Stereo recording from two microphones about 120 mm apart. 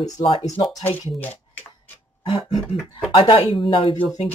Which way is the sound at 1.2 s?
15° left (ahead or behind).